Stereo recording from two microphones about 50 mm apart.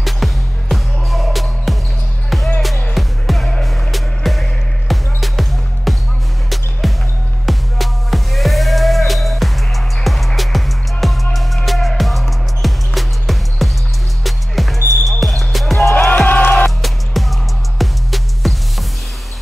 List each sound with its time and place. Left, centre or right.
0.0 s music: centre
15.9 s music: left
16.6 s music: centre